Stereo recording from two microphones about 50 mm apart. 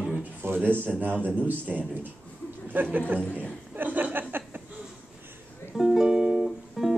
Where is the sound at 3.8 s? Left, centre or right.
Right.